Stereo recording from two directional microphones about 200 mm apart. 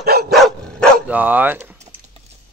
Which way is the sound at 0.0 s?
50° right (ahead or behind).